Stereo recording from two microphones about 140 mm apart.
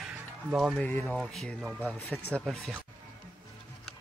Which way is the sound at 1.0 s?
Centre (ahead or behind).